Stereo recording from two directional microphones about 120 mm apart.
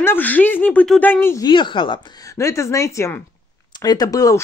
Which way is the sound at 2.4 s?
25° left (ahead or behind).